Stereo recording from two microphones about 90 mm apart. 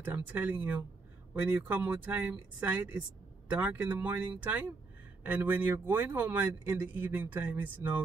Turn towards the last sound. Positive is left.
turn(degrees=-20)  # may be behind; listen again after turning